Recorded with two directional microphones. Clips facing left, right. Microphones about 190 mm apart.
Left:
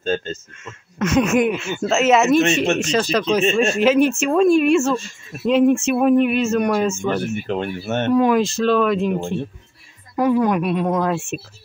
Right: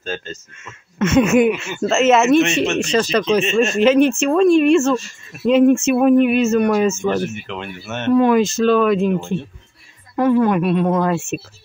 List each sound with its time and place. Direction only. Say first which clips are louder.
0.0 s speech: left 5 dB; 30° left (ahead or behind)
0.9 s speech: right 3 dB; centre (ahead or behind)
7.4 s speech: left 6 dB; 40° left (ahead or behind)
8.1 s speech: right 3 dB; centre (ahead or behind)
10.1 s speech: right 2 dB; 5° left (ahead or behind)